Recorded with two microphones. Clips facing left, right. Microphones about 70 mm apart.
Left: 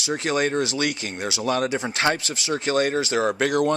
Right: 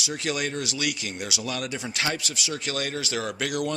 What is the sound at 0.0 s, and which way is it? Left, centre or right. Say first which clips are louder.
Speech: left 6 dB; left.